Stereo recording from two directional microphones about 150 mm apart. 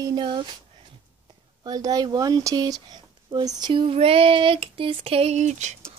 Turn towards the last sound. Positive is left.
turn(degrees=-50)  # may be behind; listen again after turning